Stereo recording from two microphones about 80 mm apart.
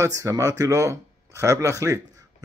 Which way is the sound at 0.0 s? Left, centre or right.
Right.